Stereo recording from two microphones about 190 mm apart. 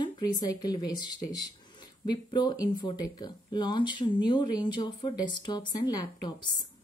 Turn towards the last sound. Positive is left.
turn(degrees=25)  # may be behind; listen again after turning